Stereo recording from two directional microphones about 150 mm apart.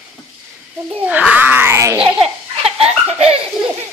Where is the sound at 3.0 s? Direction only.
45° right (ahead or behind).